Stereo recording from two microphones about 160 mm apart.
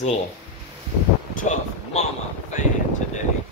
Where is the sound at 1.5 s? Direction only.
50° left (ahead or behind).